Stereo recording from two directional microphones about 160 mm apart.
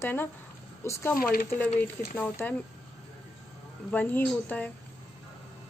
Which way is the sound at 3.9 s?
10° left (ahead or behind).